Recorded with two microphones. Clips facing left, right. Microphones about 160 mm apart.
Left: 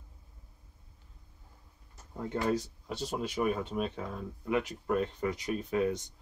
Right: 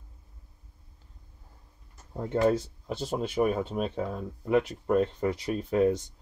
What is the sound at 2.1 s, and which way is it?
Speech, 30° right (ahead or behind).